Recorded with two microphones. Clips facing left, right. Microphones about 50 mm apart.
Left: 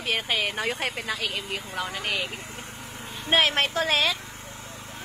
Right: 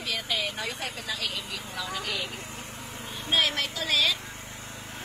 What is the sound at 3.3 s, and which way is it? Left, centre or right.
Speech, left.